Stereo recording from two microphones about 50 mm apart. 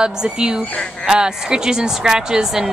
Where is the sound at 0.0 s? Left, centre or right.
Centre.